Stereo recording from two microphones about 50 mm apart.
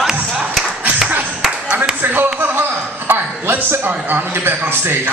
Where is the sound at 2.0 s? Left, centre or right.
Right.